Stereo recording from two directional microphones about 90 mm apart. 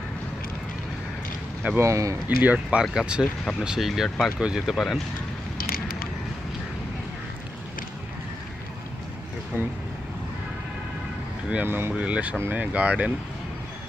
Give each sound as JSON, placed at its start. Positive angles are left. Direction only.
{"t": 1.8, "sound": "speech", "side_deg": -35}
{"t": 2.2, "sound": "speech", "side_deg": -15}
{"t": 2.8, "sound": "speech", "side_deg": -5}
{"t": 9.5, "sound": "speech", "side_deg": -25}
{"t": 11.5, "sound": "speech", "side_deg": -25}